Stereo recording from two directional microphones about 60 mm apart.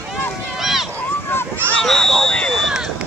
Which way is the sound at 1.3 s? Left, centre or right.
Left.